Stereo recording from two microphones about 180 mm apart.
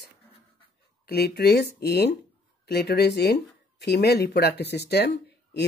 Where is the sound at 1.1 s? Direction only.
60° left (ahead or behind).